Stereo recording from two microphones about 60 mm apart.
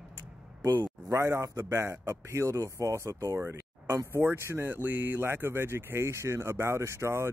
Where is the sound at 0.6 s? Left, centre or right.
Right.